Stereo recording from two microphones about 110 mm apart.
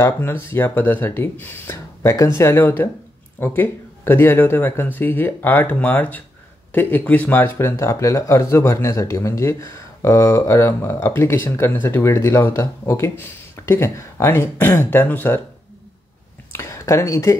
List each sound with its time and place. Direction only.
0.0 s speech: 20° left (ahead or behind)
16.5 s speech: 25° left (ahead or behind)